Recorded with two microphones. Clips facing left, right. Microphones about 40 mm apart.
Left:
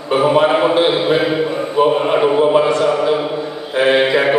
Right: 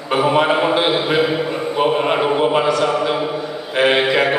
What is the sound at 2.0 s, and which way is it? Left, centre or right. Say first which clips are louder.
Chant: left 3 dB; centre.